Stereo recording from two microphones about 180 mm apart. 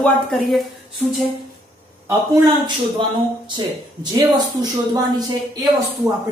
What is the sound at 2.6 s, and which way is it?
Speech, 25° right (ahead or behind).